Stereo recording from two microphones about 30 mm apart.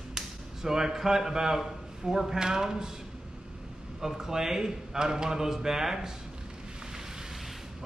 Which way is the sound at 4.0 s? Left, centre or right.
Centre.